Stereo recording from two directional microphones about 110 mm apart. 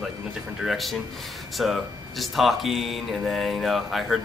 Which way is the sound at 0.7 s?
Centre (ahead or behind).